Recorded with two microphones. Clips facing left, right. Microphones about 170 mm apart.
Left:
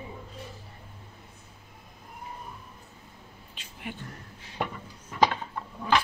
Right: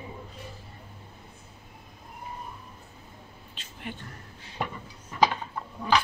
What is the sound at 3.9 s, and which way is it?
Speech, 10° left (ahead or behind).